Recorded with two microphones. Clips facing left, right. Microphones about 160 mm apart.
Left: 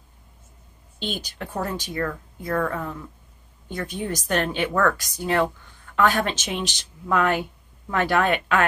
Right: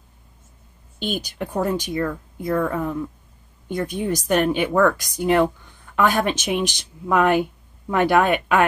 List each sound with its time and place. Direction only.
1.4 s speech: 15° right (ahead or behind)